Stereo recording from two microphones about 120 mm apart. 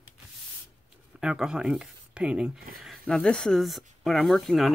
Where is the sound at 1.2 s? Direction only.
5° right (ahead or behind).